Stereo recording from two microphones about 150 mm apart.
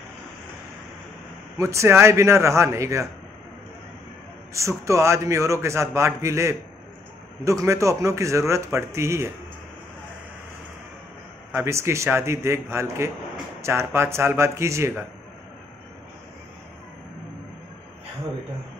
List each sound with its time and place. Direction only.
1.6 s a man's voice: 20° right (ahead or behind)
4.6 s a man's voice: 20° right (ahead or behind)
11.5 s a man's voice: 20° right (ahead or behind)